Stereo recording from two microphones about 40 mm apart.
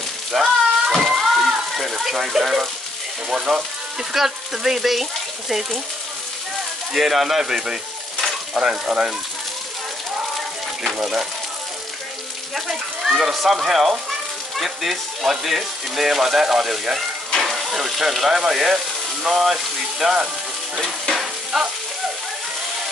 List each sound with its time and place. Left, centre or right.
0.3 s a sound: centre
3.3 s speech: centre
6.9 s sizzle: centre
8.5 s frying: centre
11.0 s frying: centre
13.1 s speech: centre
17.4 s stir: centre
19.2 s frying: centre
21.5 s frying: centre